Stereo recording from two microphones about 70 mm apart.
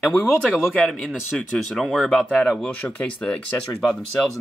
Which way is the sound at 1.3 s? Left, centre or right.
Centre.